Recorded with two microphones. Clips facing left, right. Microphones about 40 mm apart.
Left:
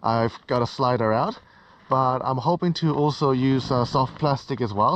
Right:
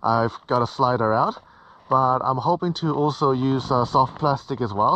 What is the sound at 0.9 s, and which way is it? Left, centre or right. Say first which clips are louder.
Speech: right 1 dB; left.